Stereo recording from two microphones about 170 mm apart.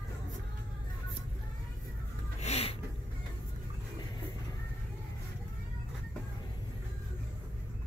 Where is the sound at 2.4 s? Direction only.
40° left (ahead or behind).